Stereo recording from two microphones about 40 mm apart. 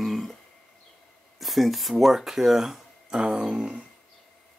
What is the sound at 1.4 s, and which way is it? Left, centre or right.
Speech, centre.